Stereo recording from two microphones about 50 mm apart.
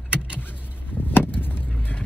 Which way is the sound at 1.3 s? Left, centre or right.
Left.